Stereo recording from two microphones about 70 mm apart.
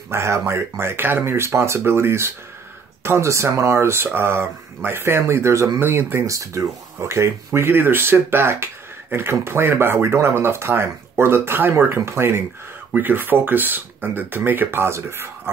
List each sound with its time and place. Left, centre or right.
0.1 s speech: right
6.2 s speech: right